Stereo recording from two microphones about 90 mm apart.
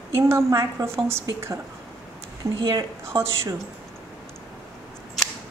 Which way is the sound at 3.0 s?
30° right (ahead or behind).